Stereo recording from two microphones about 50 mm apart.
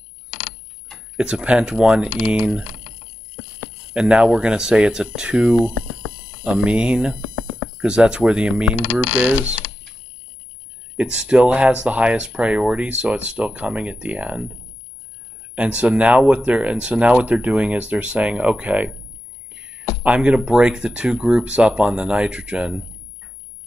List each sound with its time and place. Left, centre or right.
0.9 s tick-tock: centre
1.4 s speech: right
3.9 s speech: right
9.0 s mechanisms: left
11.0 s speech: centre
19.5 s a sound: right
20.2 s speech: centre